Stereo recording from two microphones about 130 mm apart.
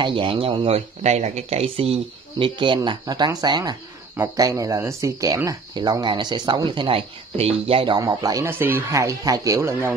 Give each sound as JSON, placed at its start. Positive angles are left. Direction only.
{"t": 0.0, "sound": "speech", "side_deg": -40}
{"t": 7.9, "sound": "speech", "side_deg": -30}